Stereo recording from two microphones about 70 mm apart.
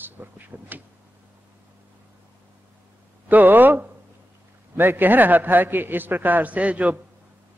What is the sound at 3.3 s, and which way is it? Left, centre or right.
A man's voice, right.